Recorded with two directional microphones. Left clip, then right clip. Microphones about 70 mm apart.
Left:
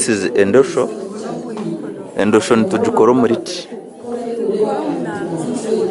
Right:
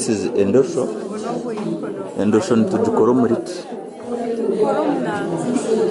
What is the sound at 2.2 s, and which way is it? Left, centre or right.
Speech, left.